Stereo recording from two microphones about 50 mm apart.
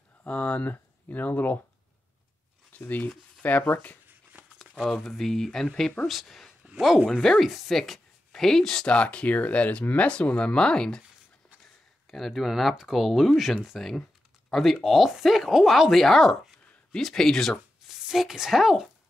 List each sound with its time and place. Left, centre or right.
0.3 s speech: left
2.7 s speech: left
4.1 s dog: right
4.8 s speech: centre
6.0 s speech: centre
12.1 s speech: centre
17.8 s speech: centre